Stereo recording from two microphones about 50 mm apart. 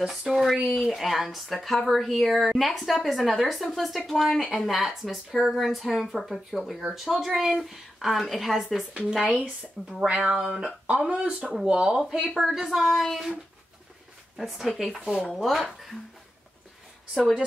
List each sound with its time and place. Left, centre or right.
0.3 s a woman's voice: centre
6.8 s a woman's voice: centre
10.0 s speech: right
12.2 s a woman's voice: centre
14.3 s a woman's voice: centre